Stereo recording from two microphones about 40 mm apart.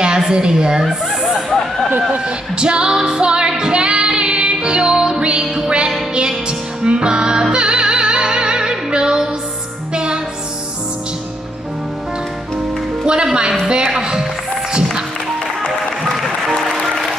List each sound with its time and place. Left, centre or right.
0.0 s a woman's voice: right
1.9 s speech: right
2.2 s music: right
5.2 s a woman's voice: right
6.8 s music: right
13.0 s music: right
13.7 s speech: right
14.7 s music: centre
16.0 s music: centre